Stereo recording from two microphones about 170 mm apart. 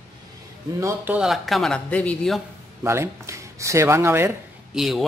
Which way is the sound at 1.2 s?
Centre (ahead or behind).